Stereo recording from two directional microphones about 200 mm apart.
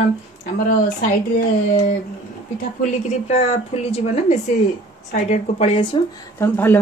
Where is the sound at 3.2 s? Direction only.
30° left (ahead or behind).